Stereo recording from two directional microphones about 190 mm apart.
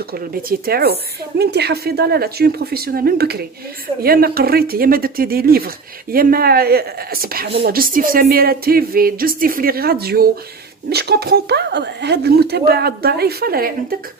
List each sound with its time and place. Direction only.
0.1 s speech: 55° right (ahead or behind)